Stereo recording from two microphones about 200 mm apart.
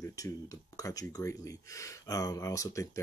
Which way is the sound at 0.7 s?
15° left (ahead or behind).